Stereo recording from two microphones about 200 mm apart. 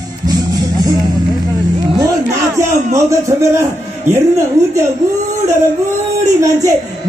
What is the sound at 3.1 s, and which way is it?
A man's voice, 15° right (ahead or behind).